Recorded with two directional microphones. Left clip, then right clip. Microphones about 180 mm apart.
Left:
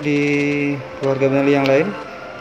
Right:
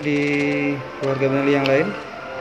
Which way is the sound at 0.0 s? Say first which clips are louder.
Left 2 dB; 15° left (ahead or behind).